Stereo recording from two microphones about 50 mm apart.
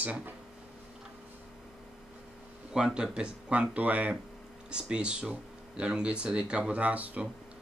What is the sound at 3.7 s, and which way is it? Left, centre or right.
Speech, right.